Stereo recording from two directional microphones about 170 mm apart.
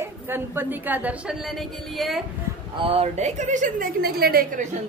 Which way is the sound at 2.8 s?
35° right (ahead or behind).